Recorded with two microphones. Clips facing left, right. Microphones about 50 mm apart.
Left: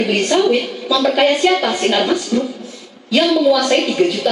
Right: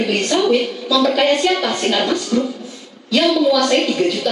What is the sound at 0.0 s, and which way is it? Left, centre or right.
A woman's voice, centre.